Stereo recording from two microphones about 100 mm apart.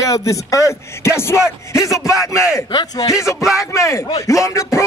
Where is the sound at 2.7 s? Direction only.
50° left (ahead or behind).